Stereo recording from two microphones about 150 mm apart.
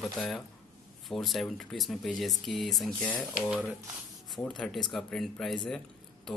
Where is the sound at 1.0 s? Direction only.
Centre (ahead or behind).